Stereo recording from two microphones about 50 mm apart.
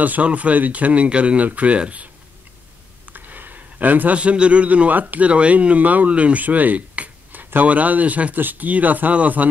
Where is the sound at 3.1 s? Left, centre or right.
Right.